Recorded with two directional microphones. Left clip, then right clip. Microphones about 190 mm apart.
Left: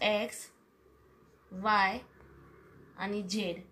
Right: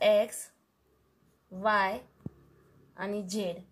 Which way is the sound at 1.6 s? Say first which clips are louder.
Right 1 dB; 50° right (ahead or behind).